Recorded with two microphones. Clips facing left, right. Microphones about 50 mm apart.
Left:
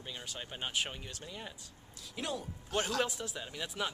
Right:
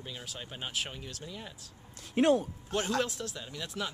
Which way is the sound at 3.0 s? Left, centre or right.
Centre.